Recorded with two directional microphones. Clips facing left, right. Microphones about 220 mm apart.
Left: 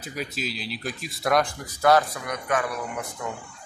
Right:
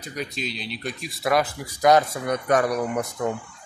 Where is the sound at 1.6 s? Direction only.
15° right (ahead or behind).